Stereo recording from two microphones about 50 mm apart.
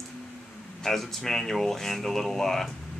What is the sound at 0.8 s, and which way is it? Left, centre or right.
Speech, centre.